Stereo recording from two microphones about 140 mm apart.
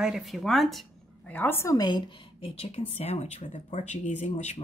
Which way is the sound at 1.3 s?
15° left (ahead or behind).